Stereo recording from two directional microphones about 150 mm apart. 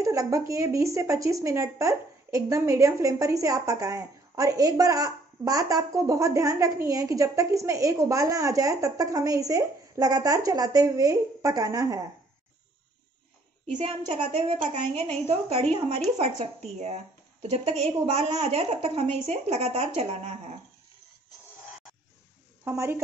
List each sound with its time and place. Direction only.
0.0 s a sound: 20° right (ahead or behind)
0.5 s speech: 20° right (ahead or behind)
14.0 s a woman's voice: 50° right (ahead or behind)
22.7 s a woman's voice: 15° right (ahead or behind)